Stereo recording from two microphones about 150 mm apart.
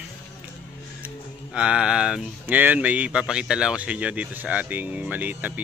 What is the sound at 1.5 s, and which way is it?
Speech, 5° right (ahead or behind).